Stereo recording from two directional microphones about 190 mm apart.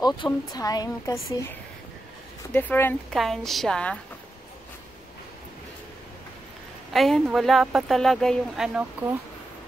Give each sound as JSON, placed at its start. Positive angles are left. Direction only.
{"t": 0.0, "sound": "a woman's voice", "side_deg": 20}
{"t": 6.9, "sound": "speech", "side_deg": 0}